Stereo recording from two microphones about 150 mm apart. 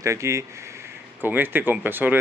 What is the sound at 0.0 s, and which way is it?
Speech, 20° right (ahead or behind).